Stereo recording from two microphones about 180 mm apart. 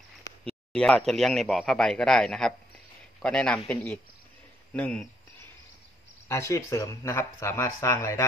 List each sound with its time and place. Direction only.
0.5 s speech: 5° left (ahead or behind)
6.2 s speech: 15° left (ahead or behind)